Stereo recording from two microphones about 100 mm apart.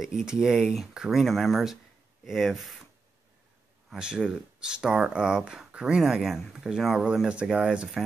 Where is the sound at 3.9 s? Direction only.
10° right (ahead or behind).